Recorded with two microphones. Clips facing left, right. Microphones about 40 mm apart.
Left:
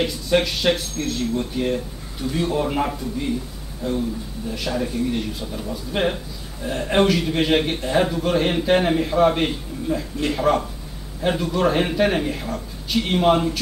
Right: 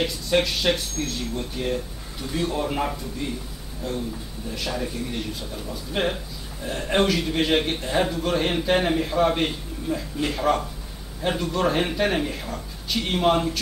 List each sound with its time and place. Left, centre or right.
0.0 s speech: centre